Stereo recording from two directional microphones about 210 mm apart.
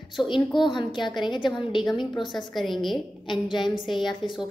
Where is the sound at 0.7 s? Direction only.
20° left (ahead or behind).